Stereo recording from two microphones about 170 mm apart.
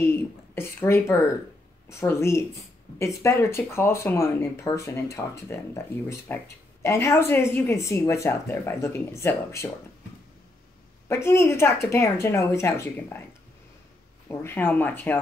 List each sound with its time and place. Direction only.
0.0 s a woman's voice: 15° left (ahead or behind)
11.1 s a woman's voice: 15° left (ahead or behind)
14.3 s a woman's voice: 15° left (ahead or behind)